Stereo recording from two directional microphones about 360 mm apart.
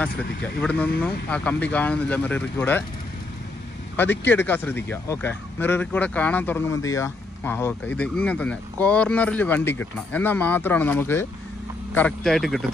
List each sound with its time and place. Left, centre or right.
0.6 s speech: centre
3.9 s speech: centre